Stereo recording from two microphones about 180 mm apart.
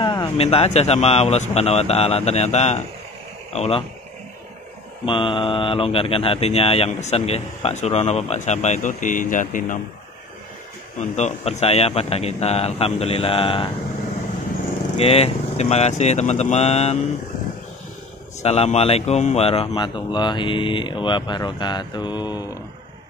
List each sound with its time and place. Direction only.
0.0 s speech: 25° left (ahead or behind)
5.0 s speech: 30° left (ahead or behind); by 9.8 s 45° left (ahead or behind)
11.0 s speech: 40° left (ahead or behind)
15.0 s speech: 35° left (ahead or behind)
18.4 s speech: 35° left (ahead or behind)